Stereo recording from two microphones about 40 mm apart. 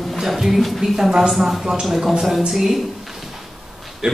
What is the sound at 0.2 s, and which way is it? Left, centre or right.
Speech, centre.